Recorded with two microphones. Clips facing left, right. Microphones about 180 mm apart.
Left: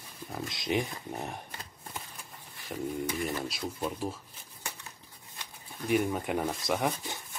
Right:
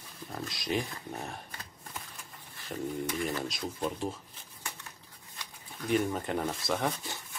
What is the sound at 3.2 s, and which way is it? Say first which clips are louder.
Speech: even; 5° left (ahead or behind).